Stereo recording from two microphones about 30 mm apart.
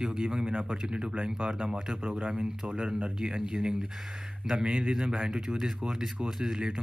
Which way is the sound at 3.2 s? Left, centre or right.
Right.